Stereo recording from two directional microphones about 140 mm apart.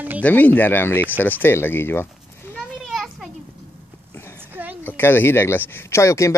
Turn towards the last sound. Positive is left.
turn(degrees=20)  # may be behind; listen again after turning